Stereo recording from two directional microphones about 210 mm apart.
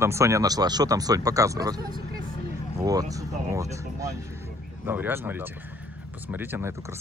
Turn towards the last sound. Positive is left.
turn(degrees=-10)  # may be behind; listen again after turning